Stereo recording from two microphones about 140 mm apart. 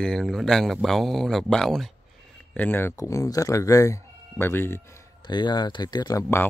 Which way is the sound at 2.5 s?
15° left (ahead or behind).